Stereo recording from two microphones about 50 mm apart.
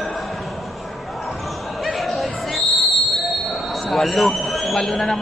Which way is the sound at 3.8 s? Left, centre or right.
Centre.